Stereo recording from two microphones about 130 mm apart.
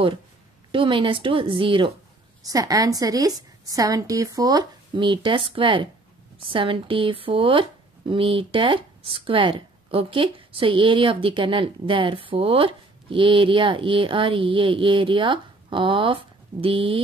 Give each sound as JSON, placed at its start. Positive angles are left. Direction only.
{"t": 0.7, "sound": "speech", "side_deg": -40}
{"t": 2.4, "sound": "a woman's voice", "side_deg": -25}